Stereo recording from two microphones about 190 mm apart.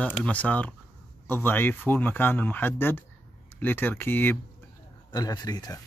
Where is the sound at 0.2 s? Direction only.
10° left (ahead or behind).